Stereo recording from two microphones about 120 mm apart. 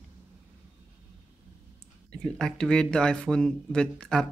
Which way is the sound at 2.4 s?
5° left (ahead or behind).